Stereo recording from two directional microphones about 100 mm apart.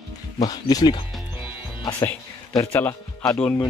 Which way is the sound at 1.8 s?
35° left (ahead or behind).